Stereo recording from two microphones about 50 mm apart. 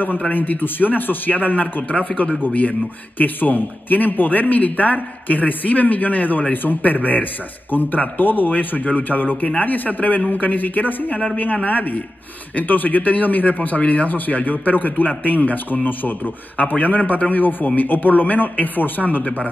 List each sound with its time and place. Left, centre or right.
0.3 s speech: left
19.2 s speech: left